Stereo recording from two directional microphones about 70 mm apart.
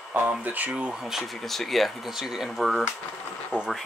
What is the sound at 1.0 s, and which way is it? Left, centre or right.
Speech, centre.